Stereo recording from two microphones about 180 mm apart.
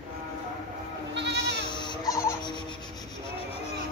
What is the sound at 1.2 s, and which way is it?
Goat, 70° right (ahead or behind).